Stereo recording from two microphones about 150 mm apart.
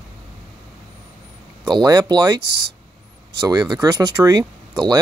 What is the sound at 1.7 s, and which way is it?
Speech, 25° right (ahead or behind).